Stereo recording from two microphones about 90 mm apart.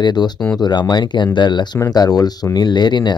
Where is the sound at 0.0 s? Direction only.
50° left (ahead or behind).